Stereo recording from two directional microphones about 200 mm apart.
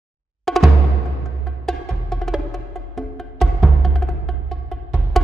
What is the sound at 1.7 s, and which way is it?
Music, centre (ahead or behind).